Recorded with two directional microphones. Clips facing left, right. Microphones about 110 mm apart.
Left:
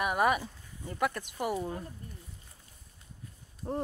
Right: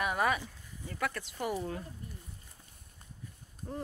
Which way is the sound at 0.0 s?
15° left (ahead or behind).